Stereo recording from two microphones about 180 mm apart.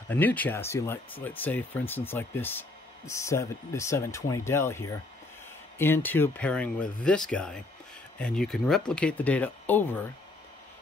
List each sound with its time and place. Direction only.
0.1 s speech: 10° left (ahead or behind)